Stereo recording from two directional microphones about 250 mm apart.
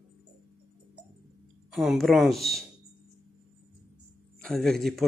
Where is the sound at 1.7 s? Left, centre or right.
Centre.